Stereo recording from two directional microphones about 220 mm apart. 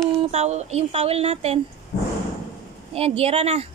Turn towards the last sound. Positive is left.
turn(degrees=-25)  # may be behind; listen again after turning